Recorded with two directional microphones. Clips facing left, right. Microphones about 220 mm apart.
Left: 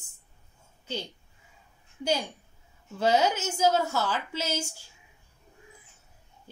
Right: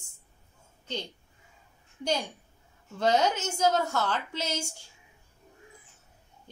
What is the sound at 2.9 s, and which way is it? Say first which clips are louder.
A woman's voice: left 1 dB; 5° left (ahead or behind).